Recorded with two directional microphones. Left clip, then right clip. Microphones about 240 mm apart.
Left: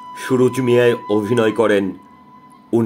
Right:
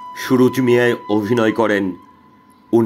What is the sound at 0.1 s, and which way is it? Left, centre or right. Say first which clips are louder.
Speech: right 1 dB; right.